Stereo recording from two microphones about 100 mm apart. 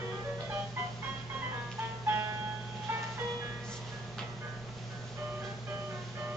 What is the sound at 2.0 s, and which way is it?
Music, 20° right (ahead or behind).